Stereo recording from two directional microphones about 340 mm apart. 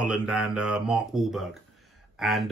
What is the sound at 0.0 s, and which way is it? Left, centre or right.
Speech, centre.